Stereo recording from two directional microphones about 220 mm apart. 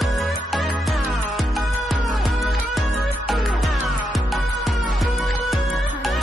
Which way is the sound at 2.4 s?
Centre (ahead or behind).